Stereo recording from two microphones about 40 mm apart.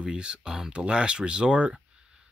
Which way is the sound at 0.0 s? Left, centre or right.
Right.